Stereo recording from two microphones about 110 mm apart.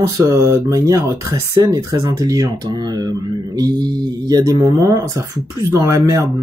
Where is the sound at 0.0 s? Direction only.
25° right (ahead or behind).